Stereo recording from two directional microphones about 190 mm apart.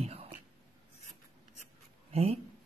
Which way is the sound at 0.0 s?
35° right (ahead or behind).